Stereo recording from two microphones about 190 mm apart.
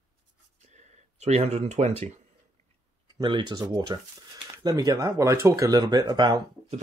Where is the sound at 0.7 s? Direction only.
35° right (ahead or behind).